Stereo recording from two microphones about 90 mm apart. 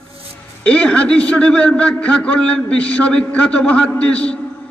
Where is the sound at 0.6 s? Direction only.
15° left (ahead or behind).